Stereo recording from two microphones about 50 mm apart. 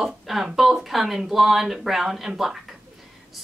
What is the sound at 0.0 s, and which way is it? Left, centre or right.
Speech, centre.